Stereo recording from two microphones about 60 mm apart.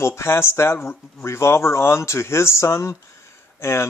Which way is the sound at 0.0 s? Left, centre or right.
Left.